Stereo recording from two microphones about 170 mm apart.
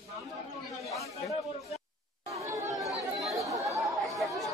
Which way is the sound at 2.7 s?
Centre (ahead or behind).